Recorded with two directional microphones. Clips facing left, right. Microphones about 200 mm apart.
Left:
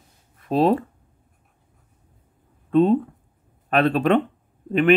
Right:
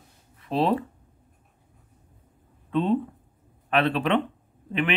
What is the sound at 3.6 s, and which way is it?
A man's voice, 45° left (ahead or behind).